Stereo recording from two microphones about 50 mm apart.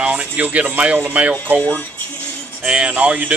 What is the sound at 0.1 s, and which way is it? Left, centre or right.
Speech, right.